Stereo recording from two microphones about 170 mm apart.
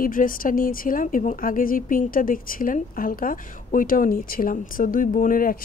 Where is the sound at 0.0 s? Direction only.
55° left (ahead or behind).